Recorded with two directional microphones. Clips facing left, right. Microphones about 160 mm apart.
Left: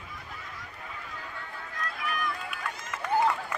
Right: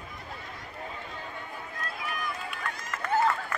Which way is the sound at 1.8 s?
25° right (ahead or behind).